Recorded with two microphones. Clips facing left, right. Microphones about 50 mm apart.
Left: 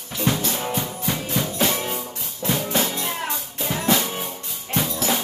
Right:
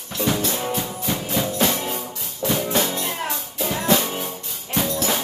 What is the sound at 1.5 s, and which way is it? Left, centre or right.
Music, centre.